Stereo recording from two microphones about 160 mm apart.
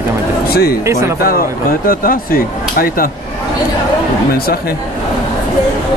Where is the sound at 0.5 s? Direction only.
75° left (ahead or behind).